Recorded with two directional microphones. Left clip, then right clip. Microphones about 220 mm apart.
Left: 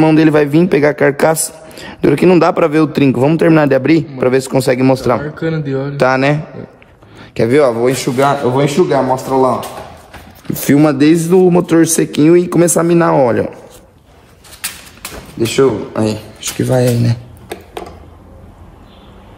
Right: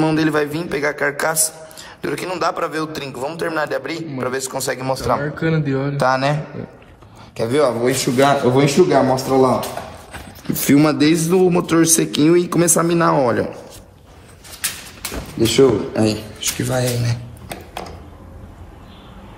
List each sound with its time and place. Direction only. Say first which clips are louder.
0.0 s a man's voice: left 8 dB; 45° left (ahead or behind)
5.2 s speech: left 2 dB; 5° left (ahead or behind)
5.9 s a man's voice: left 6 dB; 40° left (ahead or behind)
7.3 s a man's voice: left 6 dB; 35° left (ahead or behind)
8.7 s speech: left 2 dB; 15° left (ahead or behind)
10.5 s a man's voice: left 4 dB; 30° left (ahead or behind)
15.4 s a man's voice: left 2 dB; 25° left (ahead or behind); by 17.2 s 45° left (ahead or behind)